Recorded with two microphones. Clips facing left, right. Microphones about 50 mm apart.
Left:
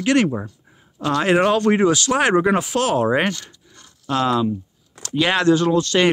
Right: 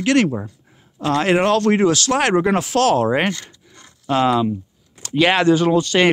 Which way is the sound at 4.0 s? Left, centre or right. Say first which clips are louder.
Right 2 dB; centre.